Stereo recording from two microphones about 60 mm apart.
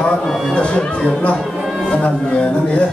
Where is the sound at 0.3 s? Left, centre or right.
Centre.